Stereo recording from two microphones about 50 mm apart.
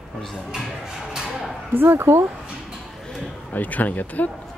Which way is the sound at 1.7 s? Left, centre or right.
Right.